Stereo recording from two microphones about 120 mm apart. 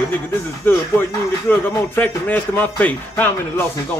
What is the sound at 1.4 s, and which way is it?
Speech, 15° left (ahead or behind).